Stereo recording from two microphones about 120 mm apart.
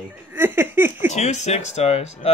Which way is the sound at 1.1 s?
70° left (ahead or behind).